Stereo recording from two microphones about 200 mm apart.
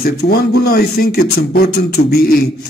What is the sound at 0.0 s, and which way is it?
A man's voice, 50° left (ahead or behind).